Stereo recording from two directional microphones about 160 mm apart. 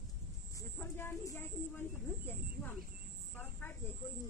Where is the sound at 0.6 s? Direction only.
15° left (ahead or behind).